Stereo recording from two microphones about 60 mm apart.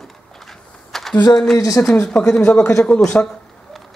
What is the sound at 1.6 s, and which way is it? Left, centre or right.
Speech, left.